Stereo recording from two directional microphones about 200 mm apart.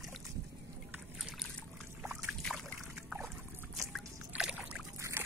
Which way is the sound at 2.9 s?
15° right (ahead or behind).